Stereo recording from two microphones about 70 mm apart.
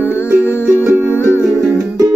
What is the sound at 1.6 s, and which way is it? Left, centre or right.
Music, right.